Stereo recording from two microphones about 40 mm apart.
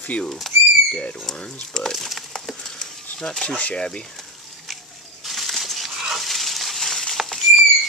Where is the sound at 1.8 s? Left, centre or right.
Centre.